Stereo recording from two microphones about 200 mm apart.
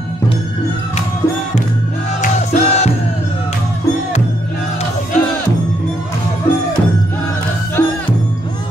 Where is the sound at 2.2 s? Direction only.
35° left (ahead or behind).